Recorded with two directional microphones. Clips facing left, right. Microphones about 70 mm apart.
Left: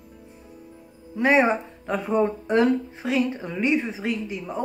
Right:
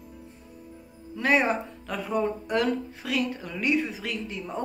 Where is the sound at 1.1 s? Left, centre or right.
Left.